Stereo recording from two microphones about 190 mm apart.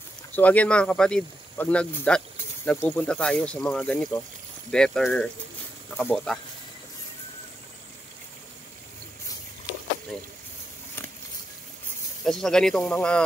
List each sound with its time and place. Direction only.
0.4 s speech: 10° left (ahead or behind)
12.3 s speech: 5° left (ahead or behind)